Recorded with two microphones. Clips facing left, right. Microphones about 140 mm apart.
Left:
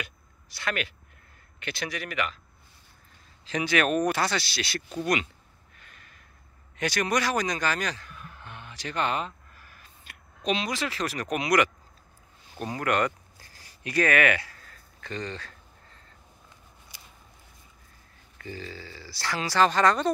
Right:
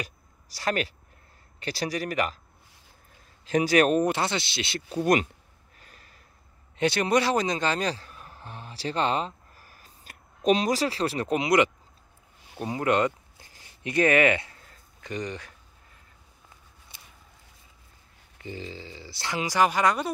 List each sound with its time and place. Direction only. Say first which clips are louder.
0.0 s a sound: right 2 dB; 35° right (ahead or behind)
1.6 s a man's voice: right 5 dB; 35° right (ahead or behind)
3.4 s speech: right 5 dB; 45° right (ahead or behind); by 4.8 s 20° right (ahead or behind)
4.9 s speech: right 5 dB; 45° right (ahead or behind)
5.8 s snort: right 1 dB; 35° right (ahead or behind)
6.8 s speech: right 4 dB; 25° right (ahead or behind)
12.5 s a sound: right 2 dB; 20° right (ahead or behind)
18.4 s speech: right 1 dB; 20° right (ahead or behind)